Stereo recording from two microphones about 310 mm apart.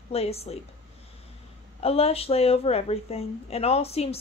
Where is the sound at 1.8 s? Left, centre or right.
Centre.